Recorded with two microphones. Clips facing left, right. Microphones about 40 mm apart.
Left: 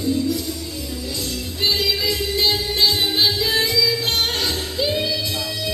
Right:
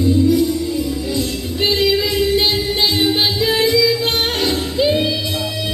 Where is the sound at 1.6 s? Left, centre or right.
Right.